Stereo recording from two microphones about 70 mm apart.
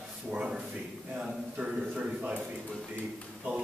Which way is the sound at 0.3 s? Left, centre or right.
Centre.